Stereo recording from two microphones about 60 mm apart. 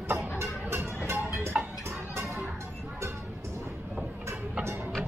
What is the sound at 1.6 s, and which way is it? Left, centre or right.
Music, right.